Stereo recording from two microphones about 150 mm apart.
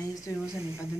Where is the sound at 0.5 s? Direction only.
20° right (ahead or behind).